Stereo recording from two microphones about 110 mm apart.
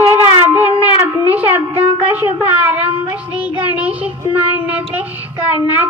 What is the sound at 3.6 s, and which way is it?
Child singing, 15° right (ahead or behind).